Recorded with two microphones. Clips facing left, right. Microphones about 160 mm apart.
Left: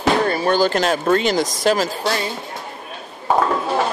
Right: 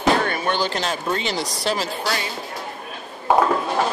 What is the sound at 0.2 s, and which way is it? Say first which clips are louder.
Speech: left 6 dB; 35° left (ahead or behind).